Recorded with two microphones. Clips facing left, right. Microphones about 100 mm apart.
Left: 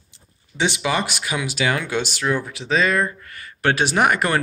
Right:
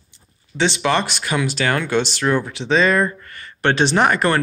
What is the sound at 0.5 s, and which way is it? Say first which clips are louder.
Speech: right 3 dB; 10° left (ahead or behind).